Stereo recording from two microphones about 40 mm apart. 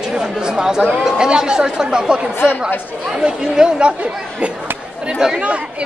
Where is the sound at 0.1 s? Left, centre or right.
Centre.